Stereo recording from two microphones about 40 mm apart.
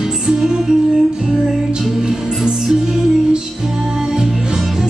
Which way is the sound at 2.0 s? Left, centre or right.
Centre.